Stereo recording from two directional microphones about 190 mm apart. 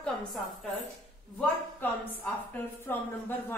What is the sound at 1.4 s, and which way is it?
A woman's voice, 10° left (ahead or behind).